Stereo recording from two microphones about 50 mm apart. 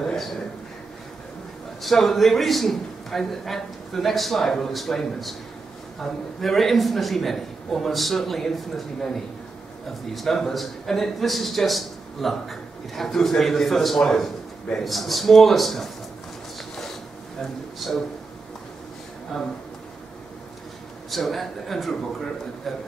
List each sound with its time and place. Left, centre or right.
0.0 s a sound: centre
1.8 s a man's voice: centre
17.4 s a man's voice: centre
19.3 s a man's voice: centre
21.1 s a man's voice: centre